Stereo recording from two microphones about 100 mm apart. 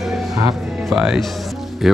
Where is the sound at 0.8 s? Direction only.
5° right (ahead or behind).